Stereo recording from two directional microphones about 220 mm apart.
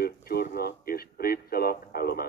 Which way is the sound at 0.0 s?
45° left (ahead or behind).